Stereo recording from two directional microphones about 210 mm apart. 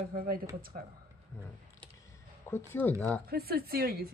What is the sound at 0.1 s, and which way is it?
Speech, 45° right (ahead or behind).